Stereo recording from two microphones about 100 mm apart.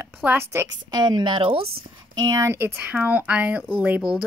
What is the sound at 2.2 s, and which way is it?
Speech, 35° right (ahead or behind).